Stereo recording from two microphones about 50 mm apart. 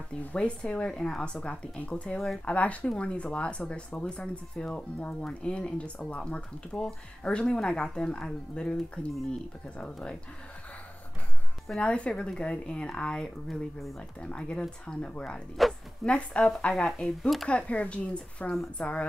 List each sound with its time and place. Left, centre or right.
0.7 s speech: left
11.8 s speech: left
13.5 s speech: centre
14.2 s speech: centre
15.5 s bow-wow: centre
16.1 s speech: left
17.5 s speech: left